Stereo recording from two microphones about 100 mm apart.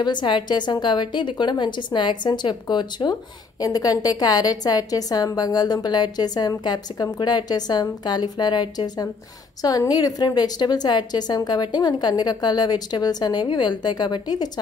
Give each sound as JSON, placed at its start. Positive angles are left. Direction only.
{"t": 0.0, "sound": "a woman's voice", "side_deg": 50}